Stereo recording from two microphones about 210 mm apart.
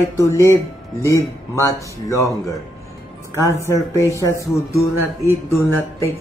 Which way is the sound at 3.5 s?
15° left (ahead or behind).